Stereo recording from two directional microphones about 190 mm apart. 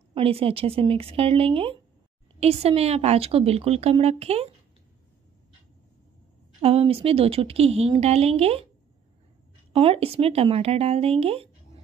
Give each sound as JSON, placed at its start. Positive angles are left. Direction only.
{"t": 0.1, "sound": "a woman's voice", "side_deg": -30}
{"t": 6.6, "sound": "a woman's voice", "side_deg": -30}
{"t": 9.7, "sound": "a woman's voice", "side_deg": -30}